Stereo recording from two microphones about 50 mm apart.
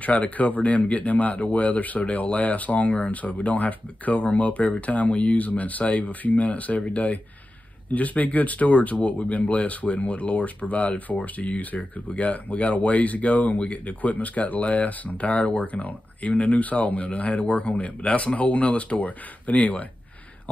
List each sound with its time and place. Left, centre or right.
0.0 s speech: left